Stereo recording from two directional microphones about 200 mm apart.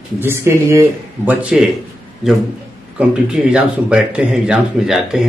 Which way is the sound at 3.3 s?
5° right (ahead or behind).